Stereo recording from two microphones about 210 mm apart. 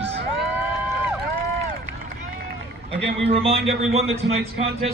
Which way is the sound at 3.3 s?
30° right (ahead or behind).